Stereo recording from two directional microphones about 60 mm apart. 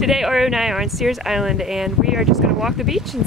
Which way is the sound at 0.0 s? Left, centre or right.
Centre.